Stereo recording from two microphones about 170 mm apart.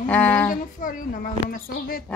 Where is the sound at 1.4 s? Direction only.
60° left (ahead or behind).